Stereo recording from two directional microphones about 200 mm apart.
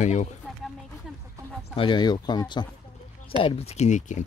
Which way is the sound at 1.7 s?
25° left (ahead or behind).